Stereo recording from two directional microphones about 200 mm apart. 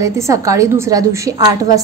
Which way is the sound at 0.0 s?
15° right (ahead or behind).